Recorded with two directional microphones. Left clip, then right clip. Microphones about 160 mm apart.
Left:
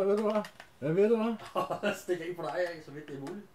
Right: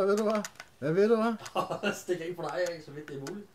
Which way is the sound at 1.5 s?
20° left (ahead or behind).